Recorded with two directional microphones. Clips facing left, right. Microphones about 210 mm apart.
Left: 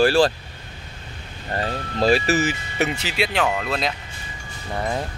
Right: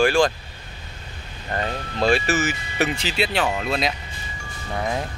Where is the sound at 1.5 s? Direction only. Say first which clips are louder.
Left 1 dB; 35° left (ahead or behind).